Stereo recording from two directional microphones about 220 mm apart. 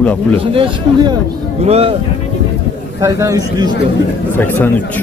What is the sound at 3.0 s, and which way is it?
Speech, 15° right (ahead or behind).